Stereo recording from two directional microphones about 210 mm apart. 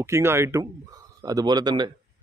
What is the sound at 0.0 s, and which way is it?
Speech, 15° right (ahead or behind).